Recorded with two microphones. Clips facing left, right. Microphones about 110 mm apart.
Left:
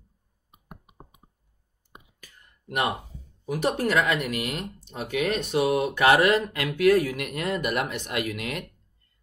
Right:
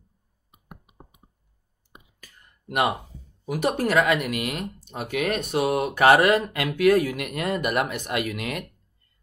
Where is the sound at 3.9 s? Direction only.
60° right (ahead or behind).